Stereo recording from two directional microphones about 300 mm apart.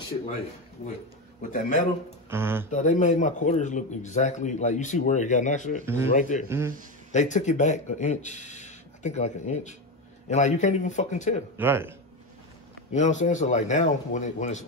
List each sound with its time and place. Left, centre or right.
1.4 s a man's voice: left
2.2 s speech: centre
2.7 s a man's voice: left
11.5 s speech: centre
12.9 s a man's voice: left